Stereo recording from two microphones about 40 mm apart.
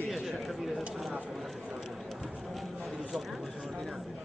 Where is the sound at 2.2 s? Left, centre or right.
Centre.